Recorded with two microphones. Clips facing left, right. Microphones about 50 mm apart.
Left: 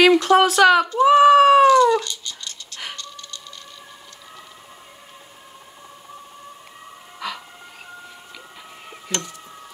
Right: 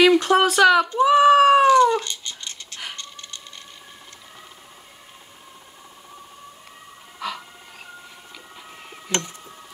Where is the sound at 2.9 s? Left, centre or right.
Right.